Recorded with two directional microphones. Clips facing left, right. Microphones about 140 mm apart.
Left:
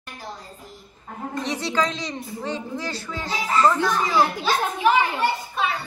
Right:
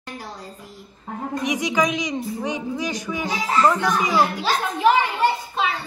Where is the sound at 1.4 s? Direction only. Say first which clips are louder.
Right 2 dB; 15° right (ahead or behind).